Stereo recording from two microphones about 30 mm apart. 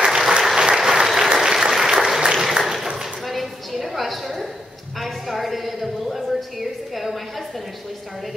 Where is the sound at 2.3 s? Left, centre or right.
Centre.